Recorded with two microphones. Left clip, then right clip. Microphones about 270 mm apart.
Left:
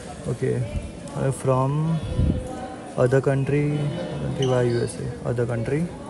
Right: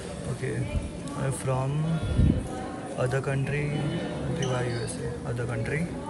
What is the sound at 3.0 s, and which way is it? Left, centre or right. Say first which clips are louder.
Speech: left 9 dB; left.